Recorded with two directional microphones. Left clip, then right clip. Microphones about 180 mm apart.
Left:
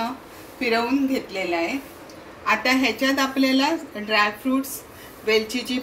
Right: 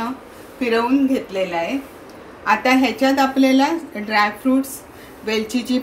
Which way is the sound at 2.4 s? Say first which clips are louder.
Right 4 dB; 50° right (ahead or behind).